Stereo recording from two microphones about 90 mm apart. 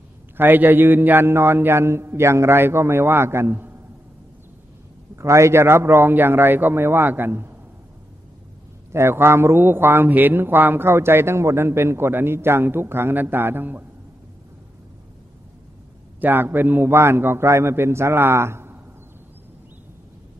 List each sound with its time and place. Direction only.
0.4 s a man's voice: 20° right (ahead or behind)
5.1 s a man's voice: 35° right (ahead or behind)
8.9 s a man's voice: 25° right (ahead or behind)
16.2 s a man's voice: 20° right (ahead or behind)